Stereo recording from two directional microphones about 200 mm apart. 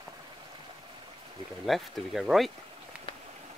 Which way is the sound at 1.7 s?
Centre (ahead or behind).